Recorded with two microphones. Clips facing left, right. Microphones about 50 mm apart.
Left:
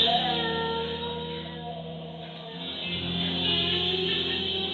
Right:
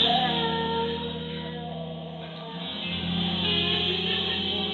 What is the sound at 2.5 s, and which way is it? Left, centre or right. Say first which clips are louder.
Music: right 1 dB; right.